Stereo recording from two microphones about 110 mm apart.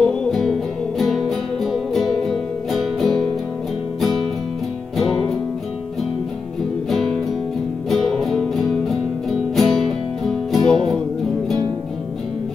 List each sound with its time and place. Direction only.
0.0 s music: 5° left (ahead or behind)
4.9 s music: 5° left (ahead or behind)
6.9 s music: 5° left (ahead or behind)